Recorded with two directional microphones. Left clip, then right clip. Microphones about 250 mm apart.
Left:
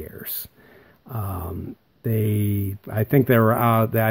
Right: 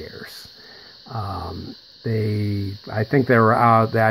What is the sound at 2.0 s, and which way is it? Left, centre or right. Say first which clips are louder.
Speech: right 1 dB; left.